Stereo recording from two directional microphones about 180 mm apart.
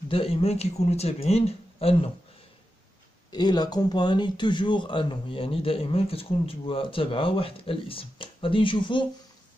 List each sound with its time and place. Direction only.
0.1 s speech: 35° left (ahead or behind)
3.3 s speech: 25° left (ahead or behind)